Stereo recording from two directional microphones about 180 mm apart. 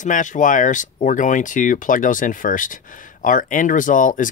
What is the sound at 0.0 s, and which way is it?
Speech, 45° left (ahead or behind).